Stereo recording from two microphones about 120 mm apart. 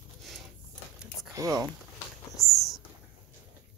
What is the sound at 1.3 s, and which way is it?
Speech, 30° right (ahead or behind).